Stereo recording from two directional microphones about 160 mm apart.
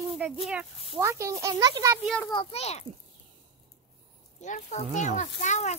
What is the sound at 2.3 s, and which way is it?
Speech, 30° left (ahead or behind).